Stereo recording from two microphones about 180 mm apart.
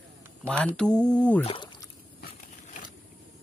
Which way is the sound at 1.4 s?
30° left (ahead or behind).